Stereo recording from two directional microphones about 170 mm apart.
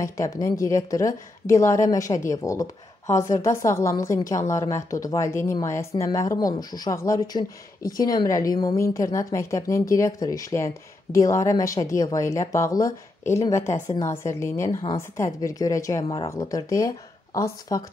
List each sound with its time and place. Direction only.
0.0 s a woman's voice: 20° left (ahead or behind)